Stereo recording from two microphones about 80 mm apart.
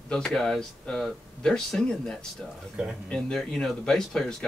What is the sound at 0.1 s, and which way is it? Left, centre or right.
Speech, centre.